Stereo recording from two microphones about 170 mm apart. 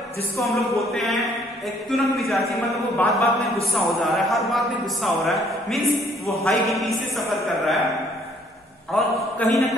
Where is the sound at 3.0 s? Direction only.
10° left (ahead or behind).